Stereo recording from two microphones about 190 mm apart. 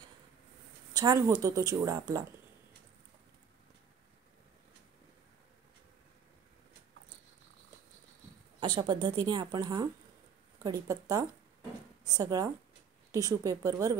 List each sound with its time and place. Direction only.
0.9 s speech: 20° right (ahead or behind)
8.5 s speech: 25° right (ahead or behind)